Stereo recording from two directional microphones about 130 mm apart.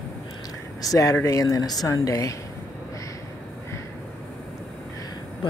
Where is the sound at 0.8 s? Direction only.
25° left (ahead or behind).